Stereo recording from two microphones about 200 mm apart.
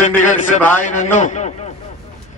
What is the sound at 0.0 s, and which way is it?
A man's voice, 40° left (ahead or behind).